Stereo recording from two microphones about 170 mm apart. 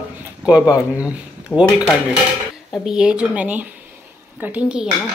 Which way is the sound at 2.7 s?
5° right (ahead or behind).